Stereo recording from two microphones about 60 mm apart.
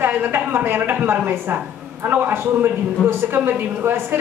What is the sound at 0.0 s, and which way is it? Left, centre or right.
A man's voice, right.